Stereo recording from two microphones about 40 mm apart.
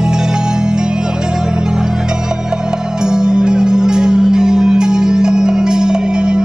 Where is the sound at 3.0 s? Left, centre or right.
Centre.